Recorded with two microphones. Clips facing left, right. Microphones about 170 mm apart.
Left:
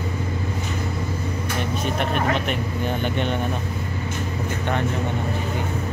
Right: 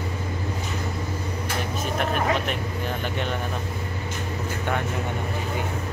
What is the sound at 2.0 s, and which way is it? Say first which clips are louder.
Speech: even; centre (ahead or behind).